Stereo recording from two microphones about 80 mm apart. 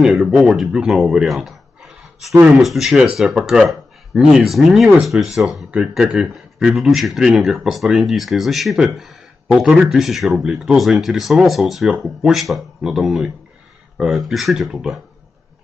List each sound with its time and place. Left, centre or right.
0.0 s speech: centre